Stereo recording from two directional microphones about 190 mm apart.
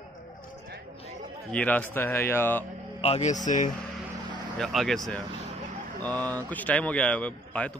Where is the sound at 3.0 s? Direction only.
35° left (ahead or behind).